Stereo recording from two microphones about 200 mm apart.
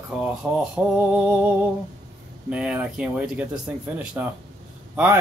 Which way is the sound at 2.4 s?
5° right (ahead or behind).